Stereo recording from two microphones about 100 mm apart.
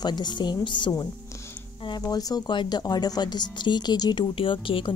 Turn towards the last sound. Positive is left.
turn(degrees=60)  # may be behind; listen again after turning